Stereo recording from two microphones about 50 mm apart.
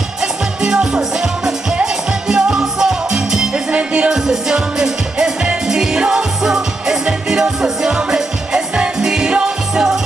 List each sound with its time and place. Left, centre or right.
0.2 s music: centre
3.7 s music: right
4.1 s music: centre